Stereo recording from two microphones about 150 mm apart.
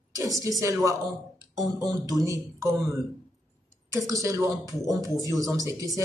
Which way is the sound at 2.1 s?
20° right (ahead or behind).